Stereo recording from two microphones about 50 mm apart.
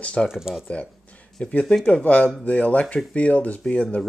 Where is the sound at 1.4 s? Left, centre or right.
Left.